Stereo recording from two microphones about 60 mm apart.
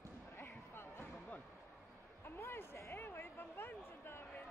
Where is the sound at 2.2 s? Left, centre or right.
Left.